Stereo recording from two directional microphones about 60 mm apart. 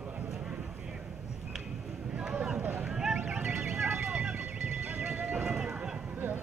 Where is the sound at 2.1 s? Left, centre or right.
Centre.